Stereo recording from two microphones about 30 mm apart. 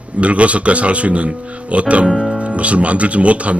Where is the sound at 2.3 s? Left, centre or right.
Right.